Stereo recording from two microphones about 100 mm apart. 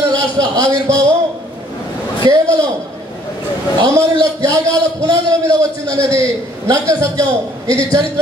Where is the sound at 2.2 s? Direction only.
45° right (ahead or behind).